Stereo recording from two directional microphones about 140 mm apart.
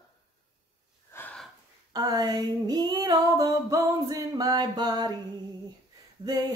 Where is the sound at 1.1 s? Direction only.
10° left (ahead or behind).